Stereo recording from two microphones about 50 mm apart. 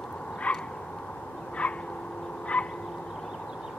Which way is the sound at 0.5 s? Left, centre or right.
Left.